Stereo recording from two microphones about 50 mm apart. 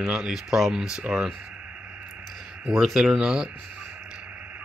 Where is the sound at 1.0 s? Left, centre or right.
Right.